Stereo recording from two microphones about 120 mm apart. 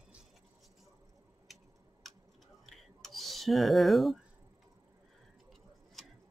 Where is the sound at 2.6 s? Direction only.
Centre (ahead or behind).